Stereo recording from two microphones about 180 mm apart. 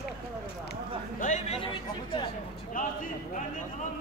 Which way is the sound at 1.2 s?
45° left (ahead or behind).